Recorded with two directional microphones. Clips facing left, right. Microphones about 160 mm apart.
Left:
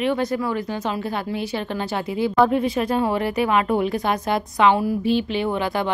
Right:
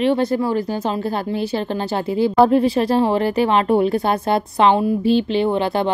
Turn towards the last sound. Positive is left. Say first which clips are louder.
# right 5 dB
turn(degrees=-30)  # may be behind; listen again after turning